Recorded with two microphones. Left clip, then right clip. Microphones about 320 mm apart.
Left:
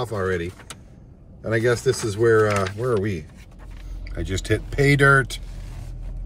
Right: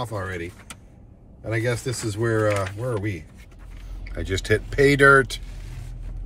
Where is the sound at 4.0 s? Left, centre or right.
Centre.